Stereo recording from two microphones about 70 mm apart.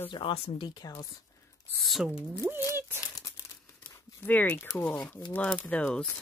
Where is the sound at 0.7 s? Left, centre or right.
Left.